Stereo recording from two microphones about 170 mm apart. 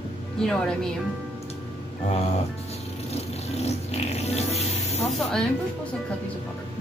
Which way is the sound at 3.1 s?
40° left (ahead or behind).